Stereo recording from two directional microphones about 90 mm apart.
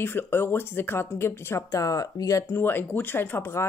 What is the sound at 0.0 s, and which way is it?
Speech, 25° left (ahead or behind).